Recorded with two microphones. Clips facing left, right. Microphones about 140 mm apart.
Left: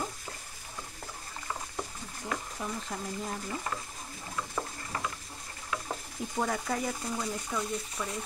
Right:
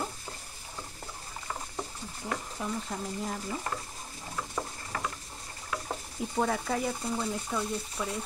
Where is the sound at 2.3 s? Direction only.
5° right (ahead or behind).